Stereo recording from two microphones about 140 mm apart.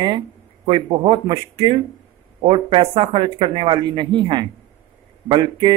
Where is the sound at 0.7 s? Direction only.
35° right (ahead or behind).